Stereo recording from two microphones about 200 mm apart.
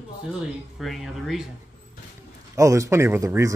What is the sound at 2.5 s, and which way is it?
Speech, 15° right (ahead or behind).